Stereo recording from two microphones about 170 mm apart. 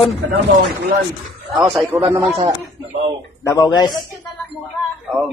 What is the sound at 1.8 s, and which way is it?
Speech, 15° right (ahead or behind).